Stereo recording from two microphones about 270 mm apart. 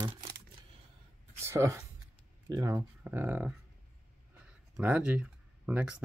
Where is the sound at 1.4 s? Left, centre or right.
Centre.